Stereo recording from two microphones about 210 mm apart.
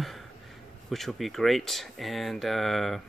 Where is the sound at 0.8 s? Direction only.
Centre (ahead or behind).